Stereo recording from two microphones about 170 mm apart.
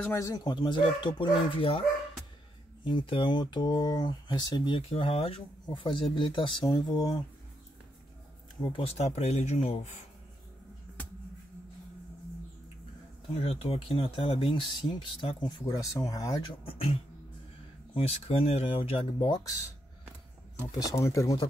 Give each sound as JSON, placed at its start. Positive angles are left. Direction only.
{"t": 0.1, "sound": "speech", "side_deg": 20}
{"t": 2.8, "sound": "speech", "side_deg": 30}
{"t": 8.7, "sound": "speech", "side_deg": 35}
{"t": 13.3, "sound": "speech", "side_deg": 35}
{"t": 16.6, "sound": "speech", "side_deg": 35}
{"t": 19.1, "sound": "speech", "side_deg": 25}
{"t": 20.8, "sound": "speech", "side_deg": 20}